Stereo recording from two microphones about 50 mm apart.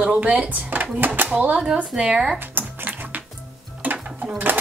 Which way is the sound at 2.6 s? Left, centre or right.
Right.